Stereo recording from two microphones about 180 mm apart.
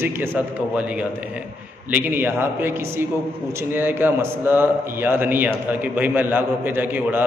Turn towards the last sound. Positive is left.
turn(degrees=-10)  # may be behind; listen again after turning